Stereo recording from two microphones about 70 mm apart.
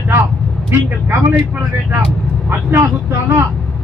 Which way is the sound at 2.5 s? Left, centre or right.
Right.